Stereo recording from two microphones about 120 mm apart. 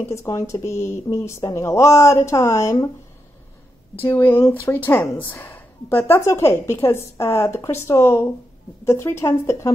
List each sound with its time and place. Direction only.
0.0 s a woman's voice: 25° left (ahead or behind)
4.0 s a woman's voice: 20° left (ahead or behind)